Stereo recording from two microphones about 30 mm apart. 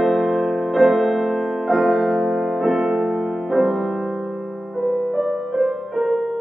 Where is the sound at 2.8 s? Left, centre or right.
Centre.